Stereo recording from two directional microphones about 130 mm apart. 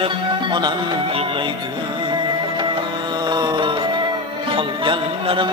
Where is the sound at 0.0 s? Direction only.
35° right (ahead or behind).